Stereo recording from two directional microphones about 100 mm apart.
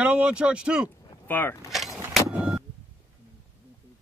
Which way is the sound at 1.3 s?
20° left (ahead or behind).